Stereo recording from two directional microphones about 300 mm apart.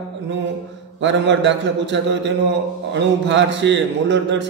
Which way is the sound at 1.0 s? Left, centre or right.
Right.